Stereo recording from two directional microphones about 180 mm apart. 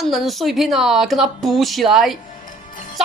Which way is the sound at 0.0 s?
Centre (ahead or behind).